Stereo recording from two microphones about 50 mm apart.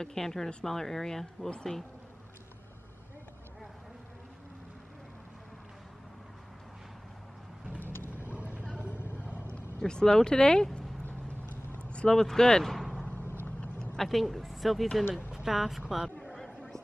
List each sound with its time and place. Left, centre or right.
0.0 s speech: centre
7.9 s vehicle: left
8.3 s a sound: right
8.9 s vehicle: left
9.8 s speech: centre
11.1 s clip-clop: left
11.9 s speech: left
12.7 s a sound: centre
14.0 s speech: centre
15.0 s speech: left
15.3 s speech: centre
16.3 s a sound: centre